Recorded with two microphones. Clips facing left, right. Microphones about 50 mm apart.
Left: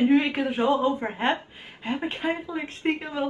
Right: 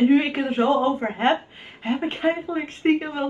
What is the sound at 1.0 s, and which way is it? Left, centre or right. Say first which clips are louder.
A woman's voice: right 4 dB; centre.